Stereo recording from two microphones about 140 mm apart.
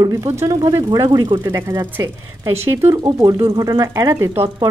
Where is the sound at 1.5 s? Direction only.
15° right (ahead or behind).